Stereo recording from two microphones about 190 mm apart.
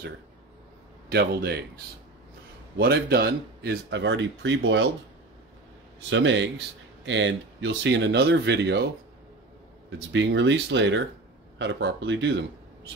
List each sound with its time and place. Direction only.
1.0 s a man's voice: 60° right (ahead or behind)
2.8 s speech: 55° right (ahead or behind); by 4.8 s 70° right (ahead or behind)
6.0 s speech: 75° right (ahead or behind)
9.8 s speech: 75° right (ahead or behind)